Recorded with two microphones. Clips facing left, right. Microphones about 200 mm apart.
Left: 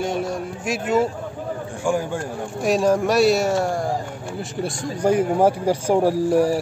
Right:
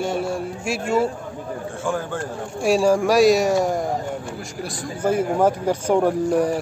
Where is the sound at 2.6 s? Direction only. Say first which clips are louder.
Right 1 dB; 10° right (ahead or behind).